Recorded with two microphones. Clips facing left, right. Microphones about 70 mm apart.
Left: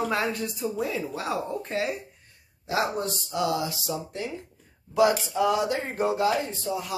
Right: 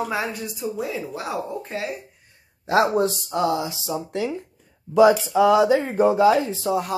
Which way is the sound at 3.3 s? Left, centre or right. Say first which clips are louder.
Even; right.